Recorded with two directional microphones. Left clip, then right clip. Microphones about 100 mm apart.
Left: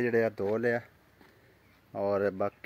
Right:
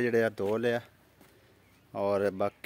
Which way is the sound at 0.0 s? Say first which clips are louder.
Even; 10° right (ahead or behind).